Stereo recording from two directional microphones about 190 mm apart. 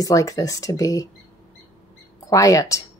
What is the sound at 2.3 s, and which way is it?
Speech, 15° left (ahead or behind).